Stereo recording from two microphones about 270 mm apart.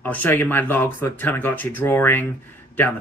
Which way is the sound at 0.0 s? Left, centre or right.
Centre.